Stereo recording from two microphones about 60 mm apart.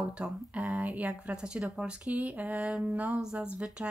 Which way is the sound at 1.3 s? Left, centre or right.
Centre.